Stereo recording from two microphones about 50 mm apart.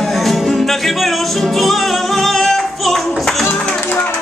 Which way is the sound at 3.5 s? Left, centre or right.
Left.